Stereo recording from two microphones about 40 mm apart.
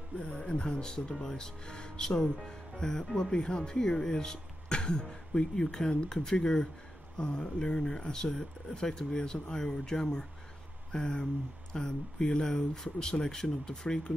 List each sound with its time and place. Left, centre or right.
0.4 s speech: left